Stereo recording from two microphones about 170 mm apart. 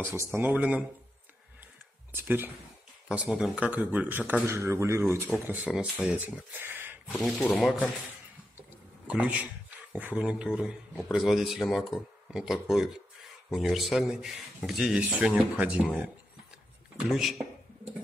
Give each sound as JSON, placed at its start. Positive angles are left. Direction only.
{"t": 0.0, "sound": "speech", "side_deg": -15}
{"t": 2.1, "sound": "speech", "side_deg": -10}
{"t": 7.1, "sound": "speech", "side_deg": 0}
{"t": 8.5, "sound": "a sound", "side_deg": -10}
{"t": 9.9, "sound": "speech", "side_deg": -10}
{"t": 17.1, "sound": "speech", "side_deg": 0}